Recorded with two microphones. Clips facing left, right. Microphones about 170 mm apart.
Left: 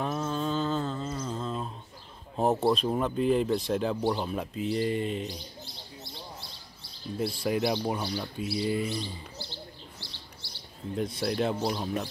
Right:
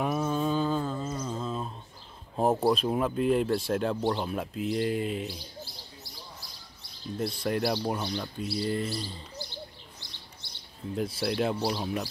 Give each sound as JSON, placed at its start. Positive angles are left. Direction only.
{"t": 0.0, "sound": "humming", "side_deg": -10}
{"t": 2.4, "sound": "speech", "side_deg": -5}
{"t": 6.0, "sound": "bird", "side_deg": 25}
{"t": 7.2, "sound": "speech", "side_deg": 5}
{"t": 9.4, "sound": "bird", "side_deg": -15}
{"t": 11.0, "sound": "speech", "side_deg": -5}